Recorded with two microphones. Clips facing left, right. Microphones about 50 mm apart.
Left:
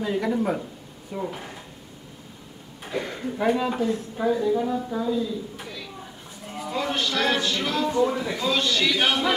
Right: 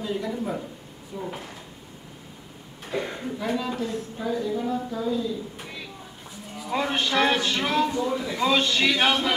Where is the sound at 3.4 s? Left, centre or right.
Centre.